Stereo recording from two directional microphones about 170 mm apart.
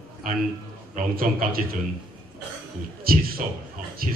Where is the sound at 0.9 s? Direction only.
55° right (ahead or behind).